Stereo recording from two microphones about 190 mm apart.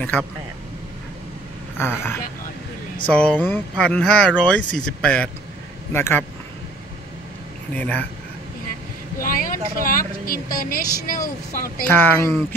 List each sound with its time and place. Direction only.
1.8 s speech: 10° left (ahead or behind)
7.7 s speech: 10° left (ahead or behind)
9.2 s vehicle: 45° left (ahead or behind)
9.8 s speech: 50° left (ahead or behind)
11.9 s speech: 10° left (ahead or behind)